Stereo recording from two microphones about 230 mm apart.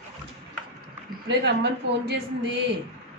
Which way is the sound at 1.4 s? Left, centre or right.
Right.